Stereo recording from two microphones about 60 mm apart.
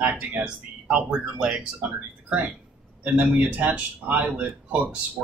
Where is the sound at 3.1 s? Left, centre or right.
Right.